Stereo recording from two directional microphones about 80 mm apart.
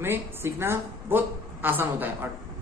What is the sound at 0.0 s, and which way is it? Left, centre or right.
A woman's voice, right.